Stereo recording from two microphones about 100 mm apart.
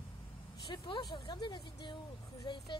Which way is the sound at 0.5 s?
45° left (ahead or behind).